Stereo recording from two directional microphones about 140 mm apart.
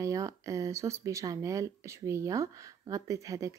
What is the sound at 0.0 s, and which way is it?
Speech, 25° right (ahead or behind).